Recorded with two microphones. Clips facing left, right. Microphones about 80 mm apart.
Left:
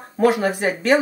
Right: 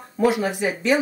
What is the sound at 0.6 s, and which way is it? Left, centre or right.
Speech, left.